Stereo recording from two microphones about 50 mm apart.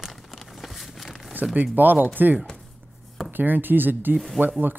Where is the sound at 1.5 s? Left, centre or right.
Right.